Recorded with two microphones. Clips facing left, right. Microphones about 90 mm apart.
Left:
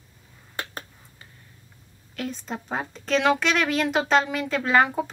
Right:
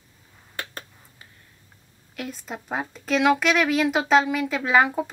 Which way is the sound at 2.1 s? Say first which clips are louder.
Left 2 dB; 5° right (ahead or behind).